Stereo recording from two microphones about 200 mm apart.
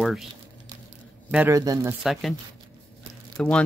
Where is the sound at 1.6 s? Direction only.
20° right (ahead or behind).